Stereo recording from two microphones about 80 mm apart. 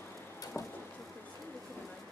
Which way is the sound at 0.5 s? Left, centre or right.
Left.